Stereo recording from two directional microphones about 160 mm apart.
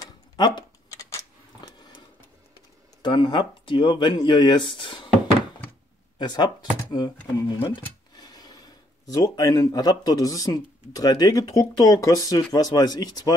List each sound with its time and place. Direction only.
0.0 s a sound: 25° left (ahead or behind)
3.0 s speech: 30° left (ahead or behind)
6.1 s speech: 25° left (ahead or behind)
8.2 s speech: 25° left (ahead or behind)